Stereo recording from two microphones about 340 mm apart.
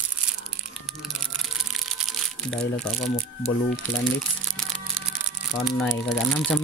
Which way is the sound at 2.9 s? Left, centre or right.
Left.